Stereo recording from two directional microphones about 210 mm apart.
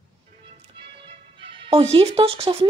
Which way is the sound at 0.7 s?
25° right (ahead or behind).